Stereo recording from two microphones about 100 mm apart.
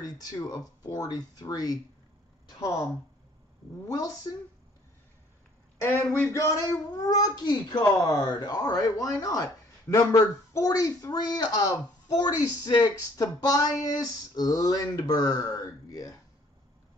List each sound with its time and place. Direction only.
0.0 s a woman's voice: 40° left (ahead or behind)
3.8 s speech: 35° left (ahead or behind)
6.3 s speech: 35° left (ahead or behind)